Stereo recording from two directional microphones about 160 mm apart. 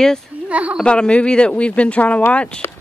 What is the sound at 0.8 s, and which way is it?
Speech, 5° left (ahead or behind).